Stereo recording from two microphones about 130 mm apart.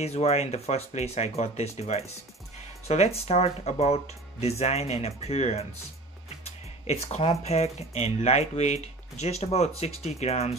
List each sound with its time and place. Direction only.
0.0 s speech: 55° left (ahead or behind)
6.9 s speech: 50° left (ahead or behind)